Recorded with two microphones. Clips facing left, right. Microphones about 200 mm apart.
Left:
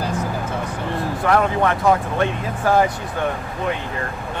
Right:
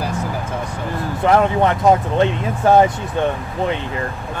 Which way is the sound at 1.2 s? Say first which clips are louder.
Right 4 dB; 20° right (ahead or behind).